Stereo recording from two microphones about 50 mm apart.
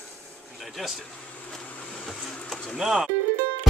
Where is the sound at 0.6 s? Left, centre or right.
Centre.